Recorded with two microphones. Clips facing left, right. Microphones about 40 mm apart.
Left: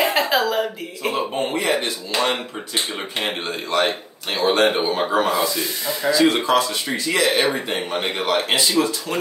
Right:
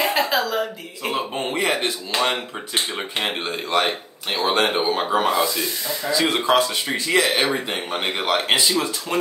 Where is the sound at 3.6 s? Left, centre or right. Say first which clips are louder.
Left 1 dB; right.